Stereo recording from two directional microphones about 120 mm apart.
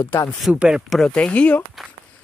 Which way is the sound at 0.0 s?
25° left (ahead or behind).